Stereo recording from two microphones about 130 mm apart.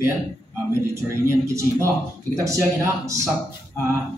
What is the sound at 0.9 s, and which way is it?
Speech, 25° right (ahead or behind).